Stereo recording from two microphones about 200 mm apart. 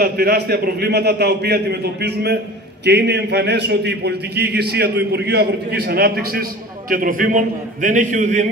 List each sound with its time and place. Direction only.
0.0 s a man's voice: 50° right (ahead or behind)